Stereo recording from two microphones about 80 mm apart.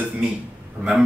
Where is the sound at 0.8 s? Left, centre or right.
Right.